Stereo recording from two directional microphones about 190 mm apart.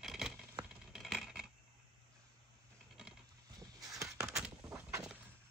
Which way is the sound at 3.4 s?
20° right (ahead or behind).